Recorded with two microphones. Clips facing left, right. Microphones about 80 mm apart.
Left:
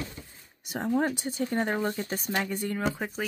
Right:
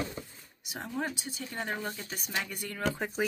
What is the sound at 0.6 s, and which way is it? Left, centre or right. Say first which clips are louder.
Speech: left 8 dB; left.